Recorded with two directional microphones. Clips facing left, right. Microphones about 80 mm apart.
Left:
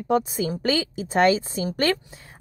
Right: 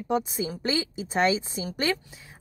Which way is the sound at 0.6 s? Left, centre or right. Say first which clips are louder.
Left 4 dB; left.